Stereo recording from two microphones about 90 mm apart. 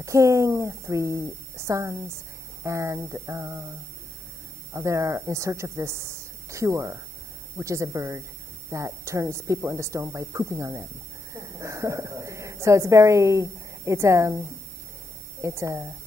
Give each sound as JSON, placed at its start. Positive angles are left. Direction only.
{"t": 0.0, "sound": "a woman's voice", "side_deg": -35}
{"t": 4.7, "sound": "a woman's voice", "side_deg": -35}